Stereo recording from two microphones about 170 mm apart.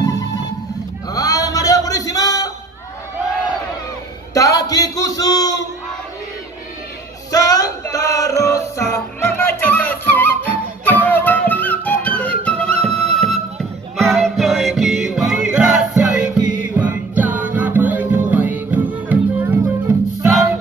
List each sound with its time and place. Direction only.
0.2 s music: 20° left (ahead or behind)
4.3 s a sound: 20° left (ahead or behind)
7.2 s music: 20° left (ahead or behind); by 20.0 s 15° right (ahead or behind)